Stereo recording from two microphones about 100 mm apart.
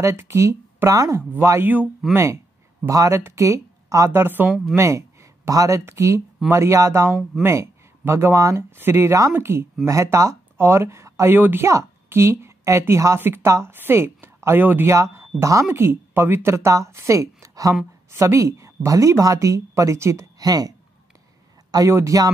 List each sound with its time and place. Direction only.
0.0 s a woman's voice: 25° right (ahead or behind)